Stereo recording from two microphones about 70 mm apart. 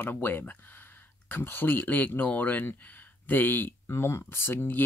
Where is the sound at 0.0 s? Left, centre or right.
Left.